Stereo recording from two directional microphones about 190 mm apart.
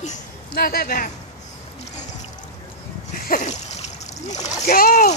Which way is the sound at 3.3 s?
40° left (ahead or behind).